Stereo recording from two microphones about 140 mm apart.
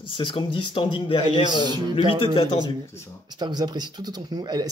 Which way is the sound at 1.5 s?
30° right (ahead or behind).